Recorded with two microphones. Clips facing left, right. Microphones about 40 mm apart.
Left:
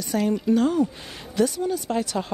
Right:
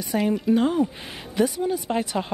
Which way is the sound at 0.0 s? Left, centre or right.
Centre.